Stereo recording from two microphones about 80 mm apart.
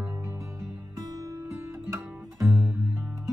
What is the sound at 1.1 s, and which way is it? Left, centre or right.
Music, right.